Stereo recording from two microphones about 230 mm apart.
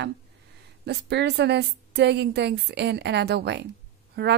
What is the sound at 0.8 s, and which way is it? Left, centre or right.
Speech, right.